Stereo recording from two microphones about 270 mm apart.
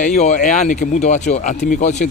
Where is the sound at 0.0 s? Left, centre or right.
Left.